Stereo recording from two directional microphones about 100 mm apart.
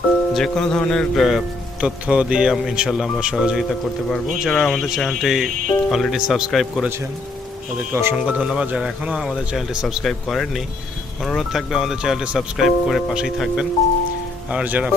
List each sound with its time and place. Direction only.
0.3 s speech: 5° left (ahead or behind)
1.8 s speech: 10° right (ahead or behind)
7.9 s speech: 25° right (ahead or behind)
8.4 s speech: 10° right (ahead or behind)